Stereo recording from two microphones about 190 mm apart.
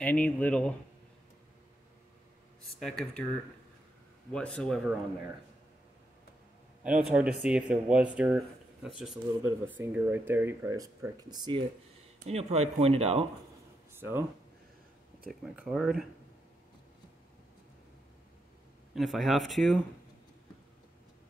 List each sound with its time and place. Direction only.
0.0 s speech: 10° left (ahead or behind)
2.8 s speech: 5° left (ahead or behind)
4.3 s speech: 5° left (ahead or behind)
6.8 s speech: 5° right (ahead or behind); by 11.6 s 20° right (ahead or behind)
12.3 s speech: 35° right (ahead or behind)
13.9 s speech: 10° right (ahead or behind)
15.5 s speech: 5° right (ahead or behind)
18.9 s speech: centre (ahead or behind)